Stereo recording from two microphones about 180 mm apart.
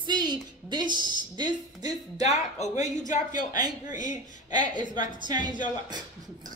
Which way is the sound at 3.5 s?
20° right (ahead or behind).